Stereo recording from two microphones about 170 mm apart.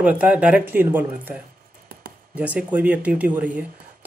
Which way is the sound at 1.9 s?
60° right (ahead or behind).